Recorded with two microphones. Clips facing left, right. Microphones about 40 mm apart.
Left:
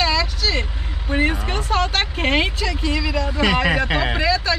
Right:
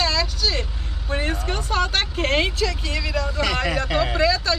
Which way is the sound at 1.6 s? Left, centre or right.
Centre.